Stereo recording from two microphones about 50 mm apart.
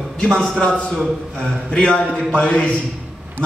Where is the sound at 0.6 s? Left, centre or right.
Centre.